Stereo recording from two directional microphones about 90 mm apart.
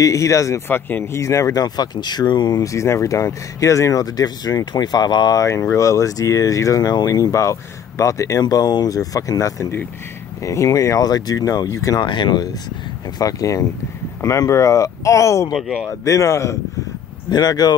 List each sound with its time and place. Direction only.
0.0 s speech: 35° left (ahead or behind)
0.7 s a man's voice: 25° left (ahead or behind)
1.2 s speech: 35° left (ahead or behind); by 2.6 s 55° left (ahead or behind)
2.6 s speech: 35° left (ahead or behind); by 5.4 s 50° left (ahead or behind)
5.4 s speech: 35° left (ahead or behind)
12.1 s speech: 55° left (ahead or behind); by 15.5 s 35° left (ahead or behind)
15.5 s a man's voice: centre (ahead or behind)
16.0 s speech: 35° left (ahead or behind)
17.3 s speech: 45° left (ahead or behind)